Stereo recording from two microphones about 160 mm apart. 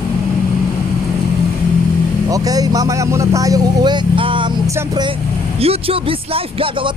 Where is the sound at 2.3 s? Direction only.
20° right (ahead or behind).